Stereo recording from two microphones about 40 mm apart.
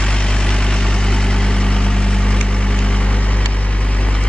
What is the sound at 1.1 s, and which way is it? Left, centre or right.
Vehicle, centre.